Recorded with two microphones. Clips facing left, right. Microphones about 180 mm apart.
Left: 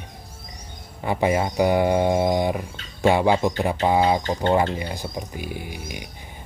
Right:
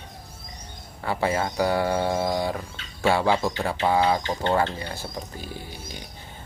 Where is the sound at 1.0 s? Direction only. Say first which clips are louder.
Left 4 dB; 20° left (ahead or behind).